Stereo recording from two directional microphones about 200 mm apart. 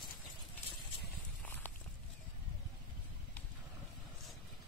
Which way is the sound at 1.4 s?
10° left (ahead or behind).